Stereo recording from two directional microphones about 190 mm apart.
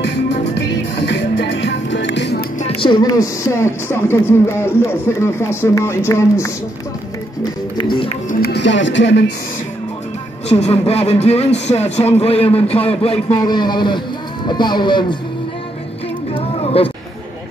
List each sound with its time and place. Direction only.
0.0 s music: 65° left (ahead or behind)
2.8 s speech: 20° left (ahead or behind)
7.7 s music: 25° left (ahead or behind)
8.3 s music: 55° left (ahead or behind)
10.5 s speech: 35° left (ahead or behind)
16.3 s a sound: 30° left (ahead or behind)